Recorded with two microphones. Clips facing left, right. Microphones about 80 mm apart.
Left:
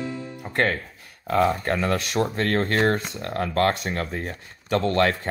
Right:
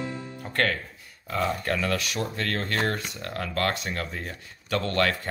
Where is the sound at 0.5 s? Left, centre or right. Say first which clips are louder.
Left 3 dB; left.